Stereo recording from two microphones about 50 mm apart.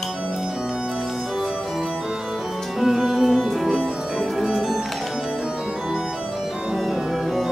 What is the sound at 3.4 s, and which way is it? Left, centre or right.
Music, centre.